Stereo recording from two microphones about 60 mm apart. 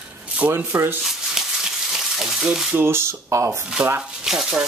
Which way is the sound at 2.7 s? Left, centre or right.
Right.